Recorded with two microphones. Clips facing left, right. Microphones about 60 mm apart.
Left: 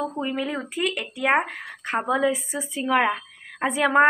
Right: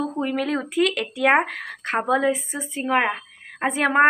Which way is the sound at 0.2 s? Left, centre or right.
Right.